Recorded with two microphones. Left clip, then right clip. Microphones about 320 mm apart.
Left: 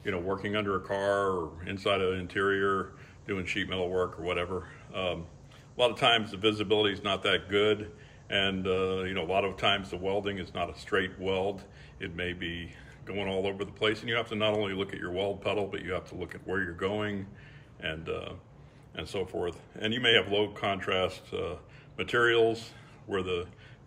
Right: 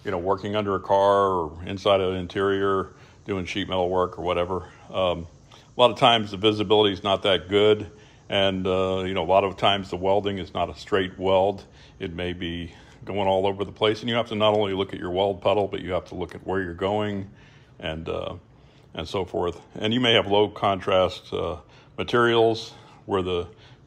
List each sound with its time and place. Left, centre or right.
0.4 s speech: centre